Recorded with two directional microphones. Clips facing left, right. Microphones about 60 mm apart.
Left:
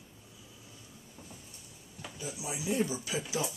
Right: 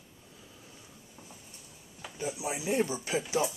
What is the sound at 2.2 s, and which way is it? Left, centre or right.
Speech, right.